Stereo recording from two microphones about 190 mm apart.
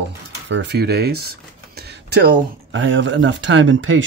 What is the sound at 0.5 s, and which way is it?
Speech, 65° right (ahead or behind).